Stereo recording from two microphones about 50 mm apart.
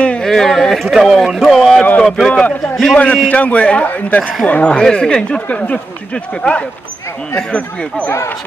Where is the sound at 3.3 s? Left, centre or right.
Left.